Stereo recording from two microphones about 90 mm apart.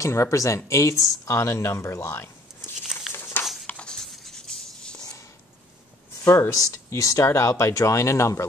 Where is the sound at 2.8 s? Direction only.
5° right (ahead or behind).